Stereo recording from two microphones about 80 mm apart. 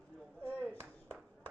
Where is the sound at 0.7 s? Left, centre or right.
Centre.